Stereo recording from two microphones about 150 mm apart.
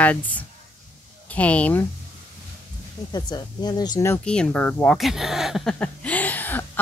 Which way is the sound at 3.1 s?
30° left (ahead or behind).